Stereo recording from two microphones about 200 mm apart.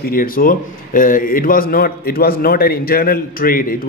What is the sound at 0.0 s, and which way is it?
A man's voice, 45° left (ahead or behind).